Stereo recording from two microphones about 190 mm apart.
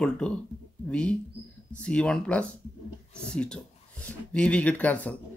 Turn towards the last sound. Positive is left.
turn(degrees=10)  # may be behind; listen again after turning